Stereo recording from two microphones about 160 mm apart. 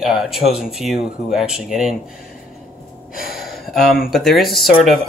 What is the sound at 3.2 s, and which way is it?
Speech, 70° left (ahead or behind).